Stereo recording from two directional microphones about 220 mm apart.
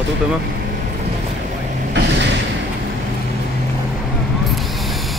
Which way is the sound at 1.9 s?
50° right (ahead or behind).